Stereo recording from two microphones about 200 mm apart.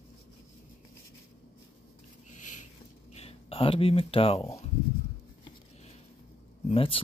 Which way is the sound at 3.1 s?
30° left (ahead or behind).